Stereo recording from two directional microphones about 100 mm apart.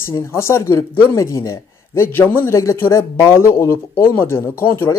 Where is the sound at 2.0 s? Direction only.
20° left (ahead or behind).